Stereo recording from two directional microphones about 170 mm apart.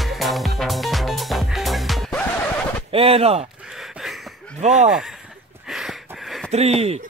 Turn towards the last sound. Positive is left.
turn(degrees=-35)  # may be behind; listen again after turning